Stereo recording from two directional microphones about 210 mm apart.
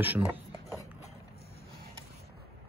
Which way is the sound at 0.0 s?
10° right (ahead or behind).